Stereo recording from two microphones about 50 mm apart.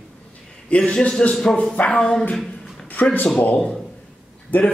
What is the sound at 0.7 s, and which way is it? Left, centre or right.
A man's voice, centre.